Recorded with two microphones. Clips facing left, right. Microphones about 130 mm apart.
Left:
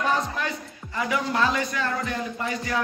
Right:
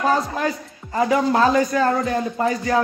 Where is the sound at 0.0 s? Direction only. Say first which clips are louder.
Right 5 dB; 40° right (ahead or behind).